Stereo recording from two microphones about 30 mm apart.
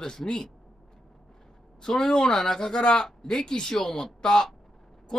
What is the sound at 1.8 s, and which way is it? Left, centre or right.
Speech, centre.